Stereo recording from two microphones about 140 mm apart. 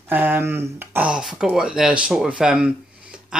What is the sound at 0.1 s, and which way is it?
Speech, 15° right (ahead or behind).